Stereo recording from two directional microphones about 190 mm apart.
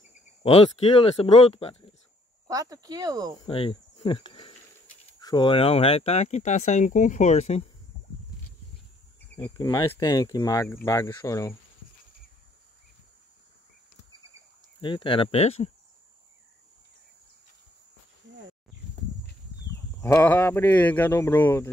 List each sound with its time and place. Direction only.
0.4 s speech: 30° left (ahead or behind)
2.4 s speech: 20° right (ahead or behind)
3.4 s speech: 30° left (ahead or behind)
9.4 s speech: 20° left (ahead or behind)
14.8 s speech: 25° left (ahead or behind)
18.3 s a sound: 75° right (ahead or behind)
20.0 s speech: 10° left (ahead or behind)